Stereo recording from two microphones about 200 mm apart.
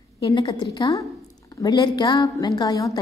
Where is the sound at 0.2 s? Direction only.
25° left (ahead or behind).